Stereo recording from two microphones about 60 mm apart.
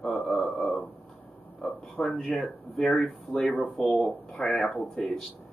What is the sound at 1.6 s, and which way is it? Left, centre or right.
Speech, centre.